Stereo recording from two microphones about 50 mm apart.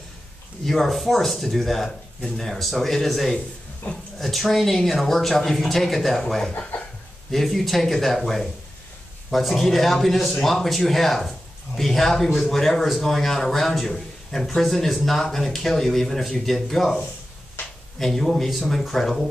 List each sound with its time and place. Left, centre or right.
0.7 s speech: centre
3.8 s speech: left
4.2 s speech: centre